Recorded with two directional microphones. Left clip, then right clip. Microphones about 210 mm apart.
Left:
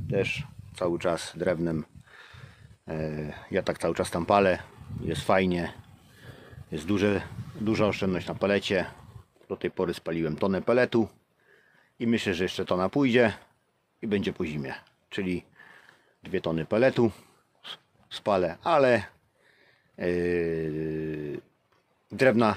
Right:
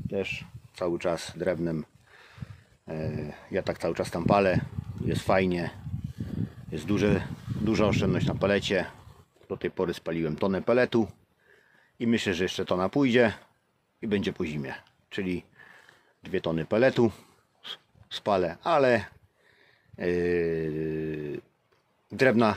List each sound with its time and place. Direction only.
0.1 s speech: 20° left (ahead or behind); by 22.5 s centre (ahead or behind)